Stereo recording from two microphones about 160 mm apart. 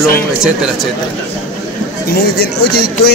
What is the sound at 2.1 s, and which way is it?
Speech, 80° left.